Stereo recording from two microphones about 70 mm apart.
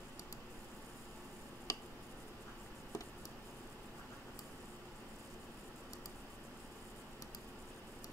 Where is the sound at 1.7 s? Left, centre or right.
Left.